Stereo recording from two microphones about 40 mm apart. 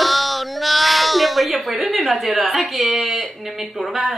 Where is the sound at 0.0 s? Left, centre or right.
Centre.